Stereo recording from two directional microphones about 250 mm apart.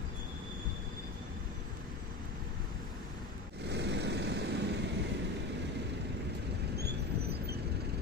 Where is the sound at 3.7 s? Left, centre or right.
Right.